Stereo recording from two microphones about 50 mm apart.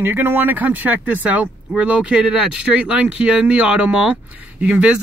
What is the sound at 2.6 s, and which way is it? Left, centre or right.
Speech, right.